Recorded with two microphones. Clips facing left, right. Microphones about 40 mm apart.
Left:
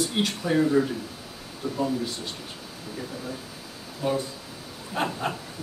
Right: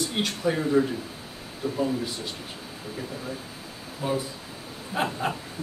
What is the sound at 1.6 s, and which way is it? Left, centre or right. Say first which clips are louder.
Speech: right 1 dB; centre.